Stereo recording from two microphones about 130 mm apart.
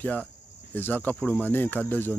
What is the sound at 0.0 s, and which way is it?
Speech, 10° left (ahead or behind).